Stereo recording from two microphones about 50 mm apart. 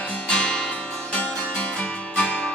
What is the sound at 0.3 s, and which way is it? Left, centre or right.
Music, centre.